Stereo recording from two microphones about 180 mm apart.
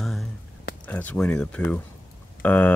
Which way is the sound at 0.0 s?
Centre (ahead or behind).